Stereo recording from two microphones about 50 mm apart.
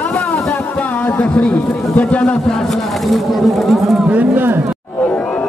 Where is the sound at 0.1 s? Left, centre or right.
Left.